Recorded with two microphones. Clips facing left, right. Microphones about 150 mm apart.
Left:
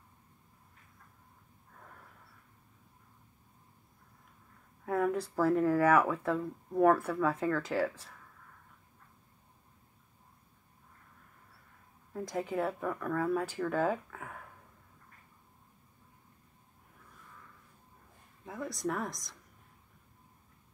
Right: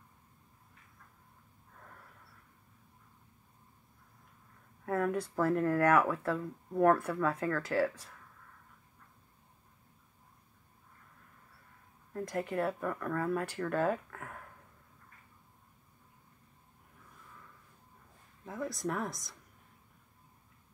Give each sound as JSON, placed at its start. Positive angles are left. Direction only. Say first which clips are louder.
{"t": 4.8, "sound": "speech", "louder": "left 1 dB", "side_deg": 0}
{"t": 12.1, "sound": "speech", "louder": "even", "side_deg": 5}
{"t": 18.4, "sound": "speech", "louder": "even", "side_deg": 0}